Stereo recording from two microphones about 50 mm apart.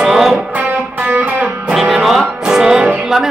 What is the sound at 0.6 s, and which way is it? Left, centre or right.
Music, right.